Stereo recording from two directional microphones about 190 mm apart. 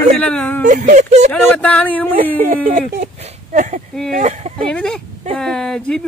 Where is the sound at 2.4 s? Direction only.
45° right (ahead or behind).